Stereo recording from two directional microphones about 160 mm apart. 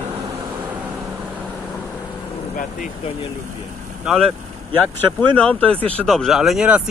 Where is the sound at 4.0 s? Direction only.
Centre (ahead or behind).